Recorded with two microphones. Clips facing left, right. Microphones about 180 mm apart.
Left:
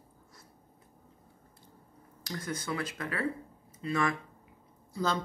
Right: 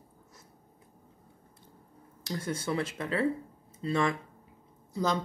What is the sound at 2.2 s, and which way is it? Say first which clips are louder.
Speech: right 3 dB; 25° right (ahead or behind).